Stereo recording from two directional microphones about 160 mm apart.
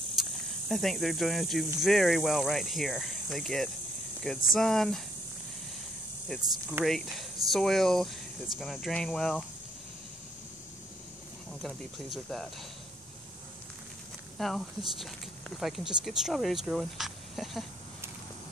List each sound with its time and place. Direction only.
0.2 s speech: centre (ahead or behind)
6.8 s speech: centre (ahead or behind)
11.6 s speech: centre (ahead or behind)
14.4 s speech: centre (ahead or behind)